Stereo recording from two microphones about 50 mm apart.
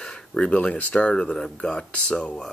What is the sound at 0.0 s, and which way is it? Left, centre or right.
Speech, centre.